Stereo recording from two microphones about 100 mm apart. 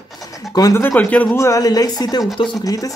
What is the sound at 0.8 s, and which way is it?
Speech, 15° left (ahead or behind).